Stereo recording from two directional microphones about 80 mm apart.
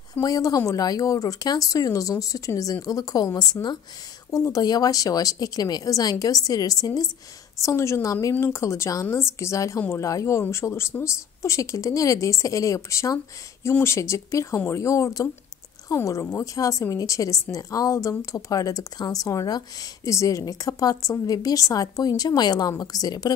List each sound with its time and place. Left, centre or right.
0.2 s a woman's voice: left
4.5 s a woman's voice: left
7.6 s speech: left
13.7 s a woman's voice: left
20.1 s a woman's voice: left